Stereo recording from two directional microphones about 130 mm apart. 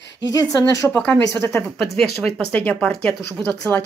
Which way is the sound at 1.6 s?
5° left (ahead or behind).